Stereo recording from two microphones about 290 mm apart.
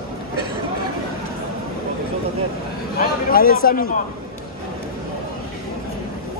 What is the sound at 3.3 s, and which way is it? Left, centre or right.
Speech, left.